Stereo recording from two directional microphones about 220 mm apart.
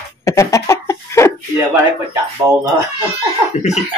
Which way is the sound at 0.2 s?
15° left (ahead or behind).